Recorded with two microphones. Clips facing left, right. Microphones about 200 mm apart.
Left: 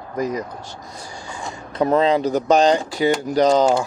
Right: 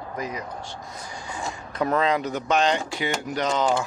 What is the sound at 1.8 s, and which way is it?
Speech, 30° left (ahead or behind).